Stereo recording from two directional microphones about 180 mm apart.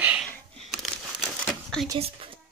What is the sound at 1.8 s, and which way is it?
Speech, 30° right (ahead or behind).